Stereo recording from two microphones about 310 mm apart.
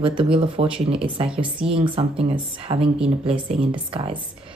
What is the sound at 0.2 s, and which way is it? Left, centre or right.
A woman's voice, centre.